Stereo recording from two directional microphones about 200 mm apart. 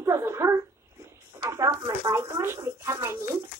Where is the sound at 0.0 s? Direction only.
15° right (ahead or behind).